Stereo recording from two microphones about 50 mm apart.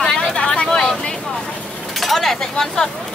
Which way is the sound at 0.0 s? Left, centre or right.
Centre.